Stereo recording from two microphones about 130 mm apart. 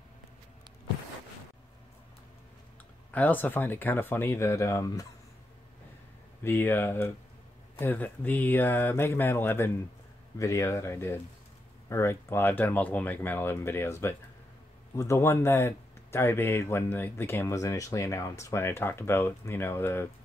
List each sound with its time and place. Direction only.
3.1 s speech: 15° left (ahead or behind)
6.4 s speech: 15° left (ahead or behind)